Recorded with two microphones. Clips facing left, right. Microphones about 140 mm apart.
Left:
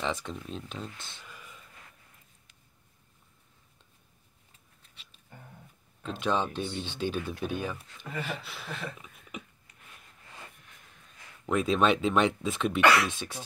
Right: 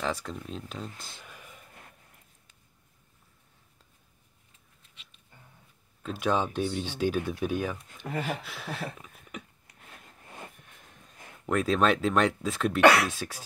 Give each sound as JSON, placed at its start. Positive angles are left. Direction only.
{"t": 0.0, "sound": "speech", "side_deg": 0}
{"t": 6.0, "sound": "speech", "side_deg": -10}
{"t": 8.1, "sound": "speech", "side_deg": -45}
{"t": 8.4, "sound": "speech", "side_deg": -10}
{"t": 11.4, "sound": "speech", "side_deg": 0}